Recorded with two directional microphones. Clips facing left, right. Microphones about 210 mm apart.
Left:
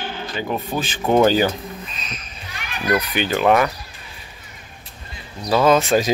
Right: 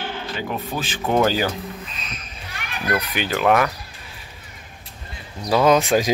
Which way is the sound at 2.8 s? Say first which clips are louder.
Left 3 dB; 15° left (ahead or behind).